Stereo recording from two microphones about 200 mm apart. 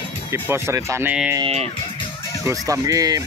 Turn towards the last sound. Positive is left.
turn(degrees=-15)  # may be behind; listen again after turning